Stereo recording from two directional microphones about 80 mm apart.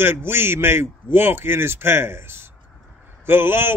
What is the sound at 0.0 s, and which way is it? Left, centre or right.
A man's voice, right.